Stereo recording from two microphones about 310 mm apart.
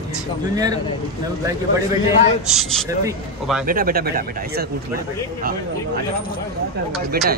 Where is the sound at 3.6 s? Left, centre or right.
Right.